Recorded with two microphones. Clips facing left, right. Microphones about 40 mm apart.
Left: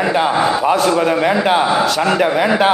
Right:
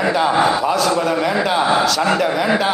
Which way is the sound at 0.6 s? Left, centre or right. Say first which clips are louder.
Left 3 dB; left.